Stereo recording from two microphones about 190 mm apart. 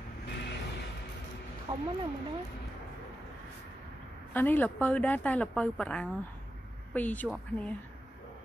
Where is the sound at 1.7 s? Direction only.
20° right (ahead or behind).